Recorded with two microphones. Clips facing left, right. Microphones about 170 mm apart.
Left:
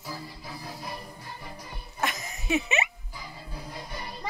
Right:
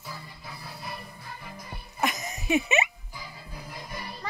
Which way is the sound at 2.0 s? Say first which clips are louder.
Right 2 dB; 20° right (ahead or behind).